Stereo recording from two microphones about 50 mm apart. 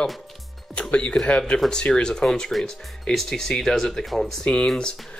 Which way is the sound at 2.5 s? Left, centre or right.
Centre.